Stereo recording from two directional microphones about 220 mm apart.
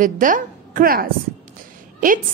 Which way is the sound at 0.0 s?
35° right (ahead or behind).